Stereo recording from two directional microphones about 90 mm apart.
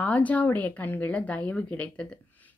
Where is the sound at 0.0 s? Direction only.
15° left (ahead or behind).